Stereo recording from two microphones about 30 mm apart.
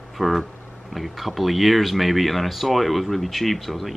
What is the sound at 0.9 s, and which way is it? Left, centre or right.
Speech, centre.